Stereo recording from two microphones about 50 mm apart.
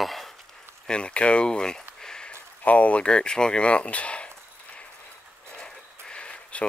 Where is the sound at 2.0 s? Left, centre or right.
Centre.